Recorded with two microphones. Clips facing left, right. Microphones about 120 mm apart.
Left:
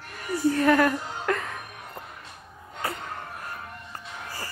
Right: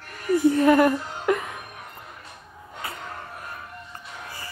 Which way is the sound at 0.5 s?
20° right (ahead or behind).